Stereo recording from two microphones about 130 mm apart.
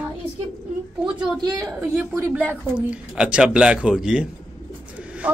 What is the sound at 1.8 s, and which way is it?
A man's voice, 15° right (ahead or behind).